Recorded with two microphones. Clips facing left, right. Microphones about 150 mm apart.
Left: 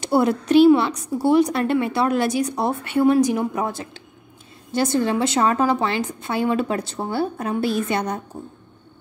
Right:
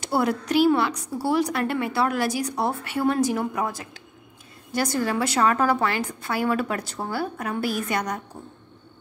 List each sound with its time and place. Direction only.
0.0 s a woman's voice: 25° left (ahead or behind)